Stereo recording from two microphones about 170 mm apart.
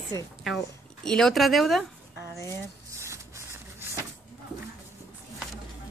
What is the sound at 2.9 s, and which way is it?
Vehicle, 15° right (ahead or behind).